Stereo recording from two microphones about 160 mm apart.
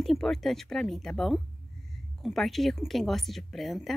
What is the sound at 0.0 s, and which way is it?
A woman's voice, centre (ahead or behind).